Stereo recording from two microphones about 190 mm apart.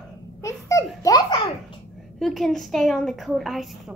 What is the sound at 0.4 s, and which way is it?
Babbling, 15° left (ahead or behind).